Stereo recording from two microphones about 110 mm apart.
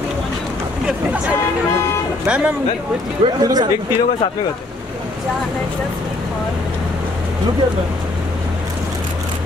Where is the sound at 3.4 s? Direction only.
35° right (ahead or behind).